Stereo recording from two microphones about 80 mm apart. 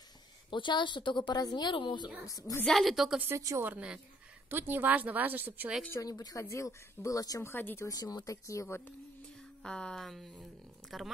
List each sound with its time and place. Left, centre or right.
0.5 s a woman's voice: left
2.2 s speech: left
2.6 s speech: centre
3.3 s a woman's voice: right
4.5 s a woman's voice: right
5.9 s speech: left
6.3 s speech: left
7.4 s speech: left
7.9 s speech: left
9.6 s speech: centre